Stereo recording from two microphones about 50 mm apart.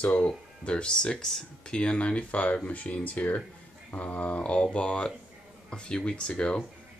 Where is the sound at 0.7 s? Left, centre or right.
Centre.